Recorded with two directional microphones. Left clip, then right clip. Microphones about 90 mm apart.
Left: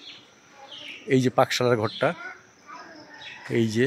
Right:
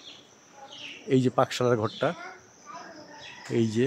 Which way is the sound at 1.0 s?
10° left (ahead or behind).